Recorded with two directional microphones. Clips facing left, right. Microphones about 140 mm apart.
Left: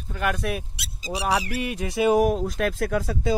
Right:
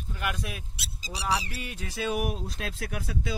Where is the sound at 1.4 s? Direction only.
90° left.